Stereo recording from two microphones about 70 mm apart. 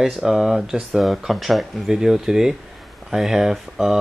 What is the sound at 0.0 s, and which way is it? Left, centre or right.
Speech, centre.